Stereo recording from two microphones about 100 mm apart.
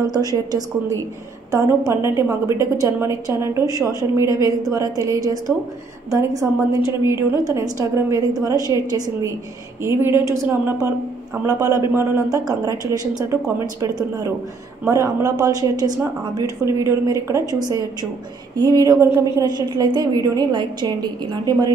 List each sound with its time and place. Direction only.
0.0 s a woman's voice: 40° right (ahead or behind)
9.8 s a woman's voice: 25° right (ahead or behind)
12.4 s a woman's voice: 40° right (ahead or behind)
19.4 s a woman's voice: 45° right (ahead or behind)